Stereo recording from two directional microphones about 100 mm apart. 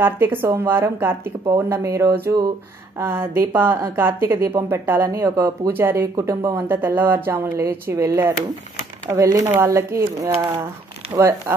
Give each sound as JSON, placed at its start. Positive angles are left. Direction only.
{"t": 0.0, "sound": "speech", "side_deg": -20}